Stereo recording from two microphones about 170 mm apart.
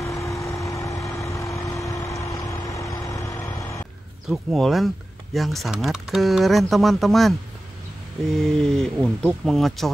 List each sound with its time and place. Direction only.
0.2 s vehicle: 20° left (ahead or behind)
2.3 s vehicle: centre (ahead or behind)
2.8 s vehicle: 20° left (ahead or behind)
4.3 s speech: centre (ahead or behind)
8.4 s speech: 5° left (ahead or behind)